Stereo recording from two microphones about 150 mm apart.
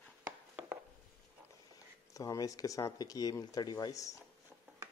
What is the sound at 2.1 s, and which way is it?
Speech, 25° left (ahead or behind).